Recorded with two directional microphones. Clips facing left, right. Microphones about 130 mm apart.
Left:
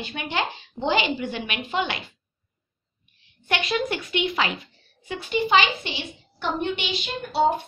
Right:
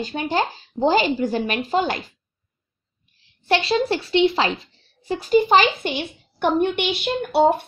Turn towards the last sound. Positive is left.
turn(degrees=-65)  # may be behind; listen again after turning